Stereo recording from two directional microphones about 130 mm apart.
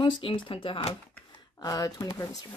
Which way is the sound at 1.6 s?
30° left (ahead or behind).